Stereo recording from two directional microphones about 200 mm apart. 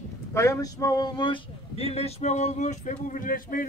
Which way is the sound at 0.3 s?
15° left (ahead or behind).